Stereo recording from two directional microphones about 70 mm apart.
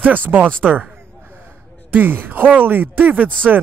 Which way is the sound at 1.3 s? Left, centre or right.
Right.